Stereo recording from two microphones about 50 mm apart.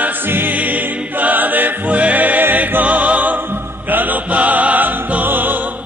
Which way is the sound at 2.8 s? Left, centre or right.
Right.